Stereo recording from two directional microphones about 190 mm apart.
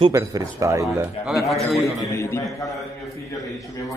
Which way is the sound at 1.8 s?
15° left (ahead or behind).